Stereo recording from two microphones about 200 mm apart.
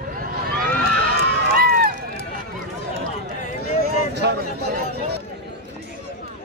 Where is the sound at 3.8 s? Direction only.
55° right (ahead or behind).